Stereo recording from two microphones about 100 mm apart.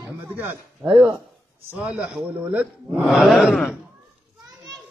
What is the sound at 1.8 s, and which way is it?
A man's voice, 10° right (ahead or behind).